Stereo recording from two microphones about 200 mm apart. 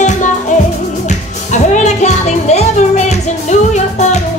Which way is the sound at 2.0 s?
35° left (ahead or behind).